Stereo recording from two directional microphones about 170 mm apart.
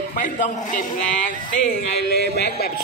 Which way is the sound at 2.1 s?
70° left (ahead or behind).